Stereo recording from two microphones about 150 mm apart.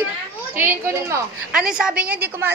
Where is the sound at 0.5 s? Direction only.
15° right (ahead or behind).